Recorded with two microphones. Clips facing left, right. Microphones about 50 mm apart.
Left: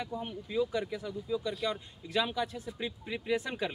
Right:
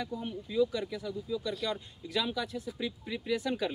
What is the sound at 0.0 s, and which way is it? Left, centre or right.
Speech, left.